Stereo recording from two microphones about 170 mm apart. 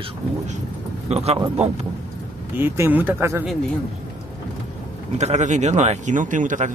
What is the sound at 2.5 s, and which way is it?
Speech, 15° right (ahead or behind).